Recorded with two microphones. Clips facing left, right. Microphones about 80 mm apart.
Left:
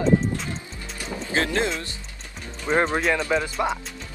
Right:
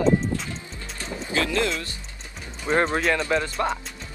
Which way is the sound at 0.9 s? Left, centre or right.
Centre.